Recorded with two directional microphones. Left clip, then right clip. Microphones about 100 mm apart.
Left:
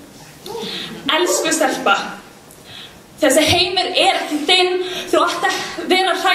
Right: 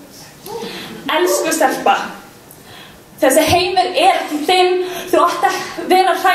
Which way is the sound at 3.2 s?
20° left (ahead or behind).